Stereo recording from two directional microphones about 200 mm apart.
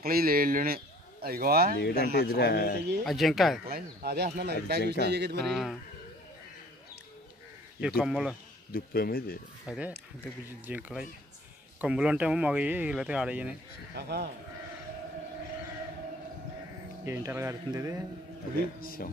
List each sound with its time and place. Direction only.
0.0 s a man's voice: 50° right (ahead or behind)
1.8 s speech: 55° left (ahead or behind)
3.1 s speech: centre (ahead or behind)
3.6 s speech: 50° right (ahead or behind)
4.6 s a sound: 55° right (ahead or behind)
5.4 s speech: centre (ahead or behind)
8.0 s speech: 5° right (ahead or behind)
8.7 s speech: 50° left (ahead or behind)
9.7 s speech: 5° right (ahead or behind)
13.9 s a sound: 55° right (ahead or behind)
17.0 s speech: 15° right (ahead or behind)
18.8 s speech: 45° left (ahead or behind)